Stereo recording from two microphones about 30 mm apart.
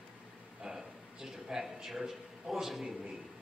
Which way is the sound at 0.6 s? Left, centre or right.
Centre.